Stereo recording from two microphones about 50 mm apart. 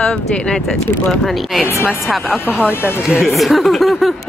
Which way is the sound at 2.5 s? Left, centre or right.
Left.